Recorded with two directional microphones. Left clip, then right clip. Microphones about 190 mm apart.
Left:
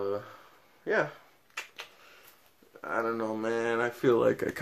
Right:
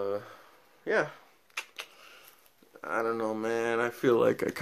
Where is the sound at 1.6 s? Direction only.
45° right (ahead or behind).